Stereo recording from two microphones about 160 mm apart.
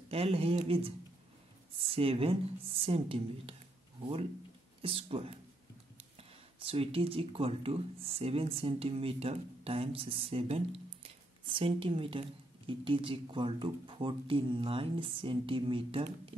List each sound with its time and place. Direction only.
0.1 s speech: 40° right (ahead or behind)
2.0 s speech: 35° right (ahead or behind)